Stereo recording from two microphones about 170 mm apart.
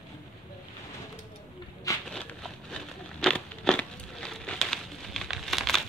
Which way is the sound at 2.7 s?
5° left (ahead or behind).